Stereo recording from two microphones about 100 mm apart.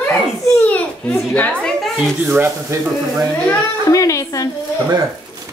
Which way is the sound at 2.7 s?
30° right (ahead or behind).